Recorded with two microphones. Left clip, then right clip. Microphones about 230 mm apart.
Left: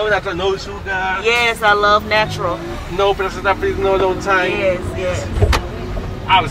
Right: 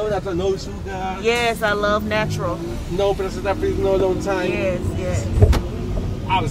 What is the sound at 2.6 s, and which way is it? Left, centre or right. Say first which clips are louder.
Speech: left 3 dB; centre.